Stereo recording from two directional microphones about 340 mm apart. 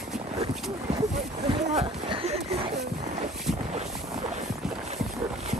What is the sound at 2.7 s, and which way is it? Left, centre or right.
Boat, right.